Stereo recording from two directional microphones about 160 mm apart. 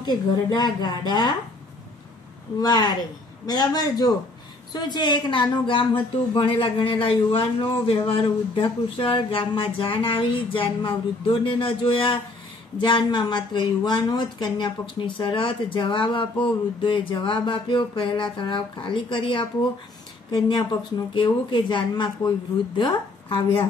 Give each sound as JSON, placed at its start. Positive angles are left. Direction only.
{"t": 0.0, "sound": "a woman's voice", "side_deg": 25}
{"t": 2.6, "sound": "a woman's voice", "side_deg": 25}